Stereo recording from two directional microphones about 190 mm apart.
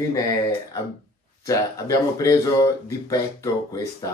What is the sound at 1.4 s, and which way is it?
Speech, 20° left (ahead or behind).